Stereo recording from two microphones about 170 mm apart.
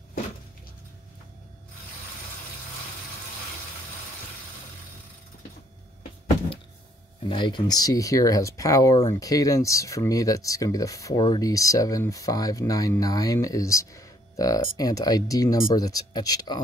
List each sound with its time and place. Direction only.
7.2 s speech: 30° left (ahead or behind)